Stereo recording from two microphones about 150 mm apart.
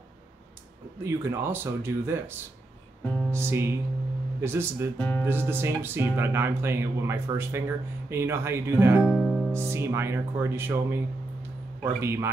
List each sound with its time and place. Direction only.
1.0 s speech: 15° right (ahead or behind)
4.9 s speech: 10° left (ahead or behind)
5.2 s speech: 15° right (ahead or behind)
9.0 s music: centre (ahead or behind)
9.5 s speech: 15° right (ahead or behind)